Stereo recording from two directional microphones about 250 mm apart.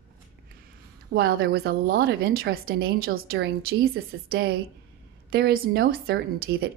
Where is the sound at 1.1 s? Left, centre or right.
Right.